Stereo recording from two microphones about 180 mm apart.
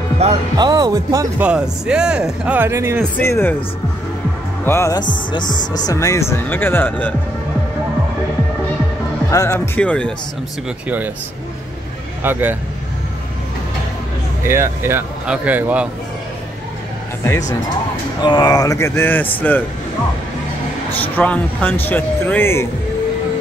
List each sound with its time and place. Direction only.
0.2 s speech: 40° right (ahead or behind)
0.6 s speech: 25° right (ahead or behind)
1.4 s speech: 5° right (ahead or behind)
3.2 s speech: 10° left (ahead or behind)
4.6 s speech: 15° left (ahead or behind)
5.4 s speech: 45° left (ahead or behind)
5.7 s speech: 20° left (ahead or behind)
9.3 s speech: 20° left (ahead or behind)
9.8 s speech: 5° left (ahead or behind)
12.2 s speech: 10° right (ahead or behind)
14.4 s speech: 15° right (ahead or behind)
17.2 s speech: 15° left (ahead or behind)
21.0 s speech: 10° left (ahead or behind)